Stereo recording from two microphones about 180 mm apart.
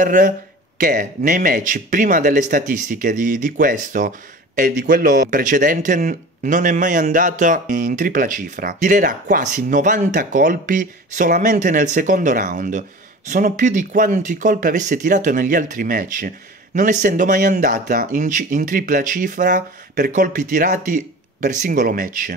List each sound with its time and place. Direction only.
0.0 s speech: 45° right (ahead or behind)